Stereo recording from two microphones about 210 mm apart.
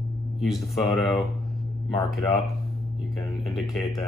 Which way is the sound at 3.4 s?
Centre (ahead or behind).